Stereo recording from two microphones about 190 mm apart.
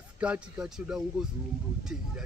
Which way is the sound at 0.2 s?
5° right (ahead or behind).